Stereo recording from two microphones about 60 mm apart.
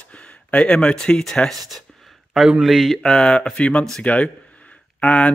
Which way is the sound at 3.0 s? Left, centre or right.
Centre.